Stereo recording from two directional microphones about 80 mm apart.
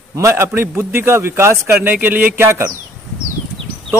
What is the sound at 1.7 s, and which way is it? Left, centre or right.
Speech, right.